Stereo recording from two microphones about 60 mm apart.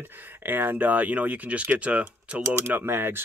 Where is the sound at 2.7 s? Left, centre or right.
Right.